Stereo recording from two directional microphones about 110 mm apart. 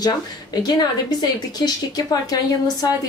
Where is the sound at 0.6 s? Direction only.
40° left (ahead or behind).